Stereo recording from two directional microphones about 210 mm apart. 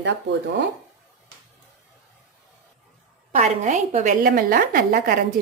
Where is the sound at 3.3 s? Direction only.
35° right (ahead or behind).